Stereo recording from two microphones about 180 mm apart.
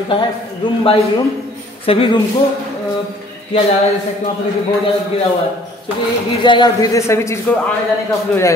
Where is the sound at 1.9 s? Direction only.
30° left (ahead or behind).